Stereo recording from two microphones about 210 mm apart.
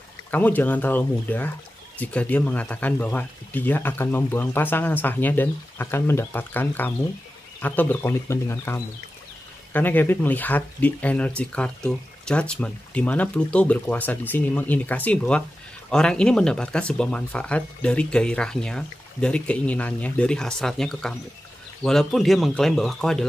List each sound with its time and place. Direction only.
0.3 s speech: 10° left (ahead or behind)